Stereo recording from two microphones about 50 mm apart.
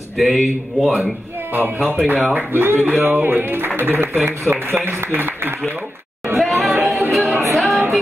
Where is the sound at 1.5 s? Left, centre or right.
Right.